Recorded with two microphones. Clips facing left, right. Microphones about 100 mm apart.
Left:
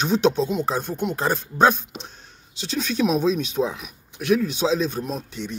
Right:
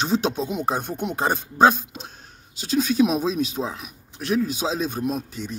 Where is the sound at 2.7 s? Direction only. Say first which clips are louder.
Right 2 dB; 5° right (ahead or behind).